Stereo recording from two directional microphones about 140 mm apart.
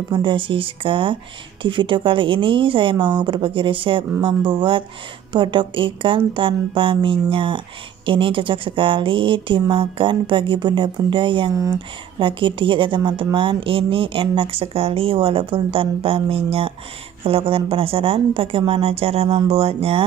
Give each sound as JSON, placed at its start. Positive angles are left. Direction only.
{"t": 0.1, "sound": "speech", "side_deg": -35}
{"t": 11.5, "sound": "speech", "side_deg": -25}
{"t": 12.2, "sound": "speech", "side_deg": -35}